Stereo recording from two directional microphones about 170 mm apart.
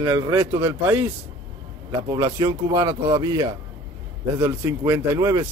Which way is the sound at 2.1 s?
20° right (ahead or behind).